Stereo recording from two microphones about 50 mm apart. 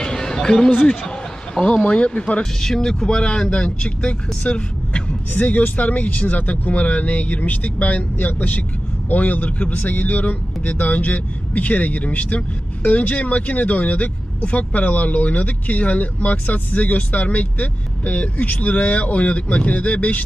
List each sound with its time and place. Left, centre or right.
0.0 s a sound: centre
0.8 s speech: centre
2.6 s speech: centre; by 20.2 s left